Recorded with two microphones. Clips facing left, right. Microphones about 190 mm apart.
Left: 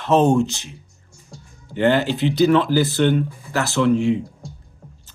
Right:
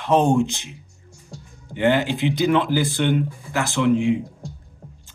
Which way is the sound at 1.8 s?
15° right (ahead or behind).